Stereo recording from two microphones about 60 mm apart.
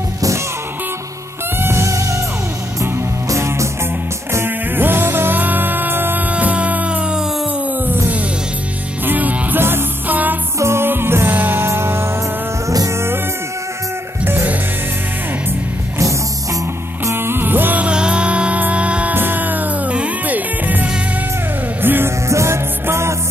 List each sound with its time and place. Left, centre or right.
1.6 s music: right
4.5 s music: right
6.3 s music: right
9.0 s music: right
9.6 s music: right
10.6 s music: right
11.6 s music: right
12.6 s music: right
14.2 s music: right
17.0 s music: right
17.8 s music: centre
19.1 s music: right
22.3 s music: right